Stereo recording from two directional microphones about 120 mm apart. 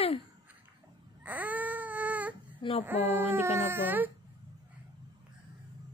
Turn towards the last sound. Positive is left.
turn(degrees=-15)  # may be behind; listen again after turning